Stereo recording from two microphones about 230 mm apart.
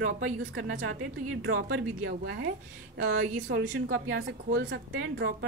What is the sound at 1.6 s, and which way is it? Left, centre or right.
A woman's voice, right.